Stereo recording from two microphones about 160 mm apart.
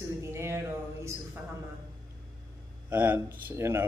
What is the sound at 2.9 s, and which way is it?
Speech, 10° right (ahead or behind).